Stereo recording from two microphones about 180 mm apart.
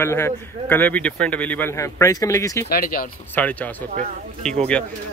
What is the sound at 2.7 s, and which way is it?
Speech, 55° left (ahead or behind).